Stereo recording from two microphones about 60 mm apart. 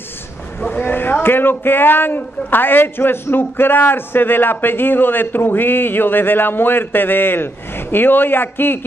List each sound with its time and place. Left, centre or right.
0.6 s a man's voice: left